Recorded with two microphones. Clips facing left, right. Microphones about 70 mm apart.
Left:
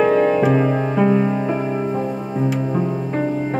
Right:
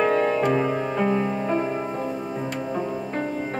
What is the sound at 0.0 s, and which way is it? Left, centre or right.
Music, centre.